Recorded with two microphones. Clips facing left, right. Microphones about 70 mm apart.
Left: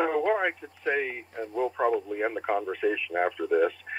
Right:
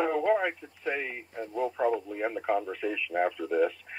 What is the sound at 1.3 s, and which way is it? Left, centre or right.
Speech, left.